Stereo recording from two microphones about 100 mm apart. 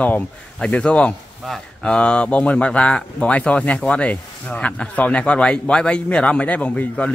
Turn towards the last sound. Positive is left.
turn(degrees=15)  # may be behind; listen again after turning